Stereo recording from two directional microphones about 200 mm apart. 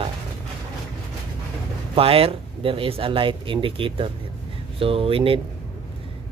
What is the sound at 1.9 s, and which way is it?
Speech, 30° right (ahead or behind).